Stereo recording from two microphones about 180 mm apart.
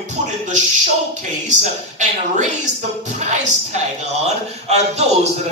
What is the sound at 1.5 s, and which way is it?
Speech, 40° right (ahead or behind).